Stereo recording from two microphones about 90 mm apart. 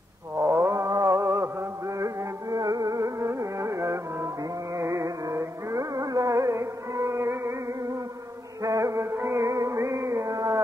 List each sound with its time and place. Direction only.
0.4 s chant: 30° right (ahead or behind)
4.7 s music: 35° right (ahead or behind)